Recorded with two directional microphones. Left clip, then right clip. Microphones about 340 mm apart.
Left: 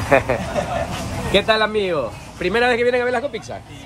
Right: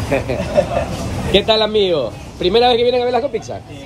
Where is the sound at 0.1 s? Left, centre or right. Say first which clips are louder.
Left 4 dB; centre.